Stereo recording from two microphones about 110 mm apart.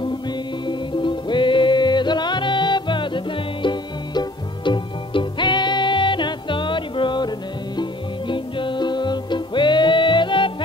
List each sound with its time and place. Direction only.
0.7 s music: 45° left (ahead or behind)